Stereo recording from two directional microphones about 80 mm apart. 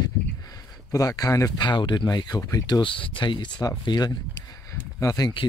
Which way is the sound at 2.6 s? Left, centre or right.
Left.